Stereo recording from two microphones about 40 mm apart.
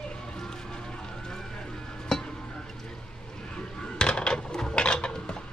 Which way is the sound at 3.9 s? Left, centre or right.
Left.